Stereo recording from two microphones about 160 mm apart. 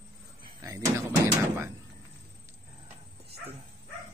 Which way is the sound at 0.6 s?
20° right (ahead or behind).